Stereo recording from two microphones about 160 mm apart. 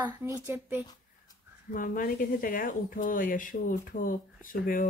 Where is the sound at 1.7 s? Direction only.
60° left (ahead or behind).